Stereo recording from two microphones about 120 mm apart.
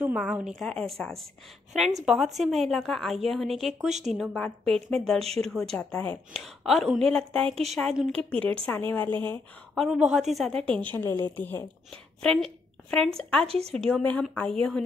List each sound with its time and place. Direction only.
0.1 s speech: 5° right (ahead or behind)
5.2 s speech: 60° right (ahead or behind)
5.5 s a woman's voice: 5° left (ahead or behind)
6.3 s a woman's voice: centre (ahead or behind)
9.8 s a woman's voice: 5° right (ahead or behind); by 11.6 s 15° left (ahead or behind)
12.2 s speech: 5° left (ahead or behind)
13.5 s speech: 60° right (ahead or behind)
13.7 s a woman's voice: 5° left (ahead or behind)